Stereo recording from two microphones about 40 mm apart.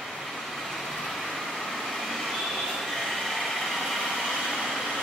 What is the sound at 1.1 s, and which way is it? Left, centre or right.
Vehicle, centre.